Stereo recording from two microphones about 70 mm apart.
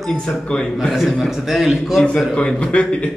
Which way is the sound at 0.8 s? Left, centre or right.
Centre.